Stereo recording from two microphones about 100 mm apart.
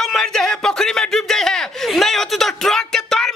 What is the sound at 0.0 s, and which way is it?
Chuckle, 5° left (ahead or behind).